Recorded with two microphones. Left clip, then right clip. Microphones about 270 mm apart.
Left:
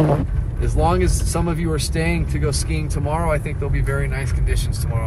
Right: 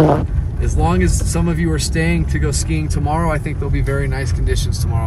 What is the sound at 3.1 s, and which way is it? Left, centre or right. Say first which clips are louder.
Speech: right 2 dB; centre.